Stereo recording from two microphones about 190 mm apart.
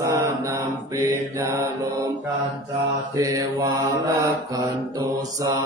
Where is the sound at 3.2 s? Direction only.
15° right (ahead or behind).